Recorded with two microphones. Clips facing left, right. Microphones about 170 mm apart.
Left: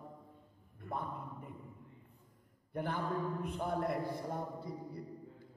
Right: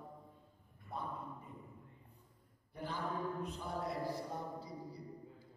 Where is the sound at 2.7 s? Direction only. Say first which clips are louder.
Left 4 dB; 55° left (ahead or behind).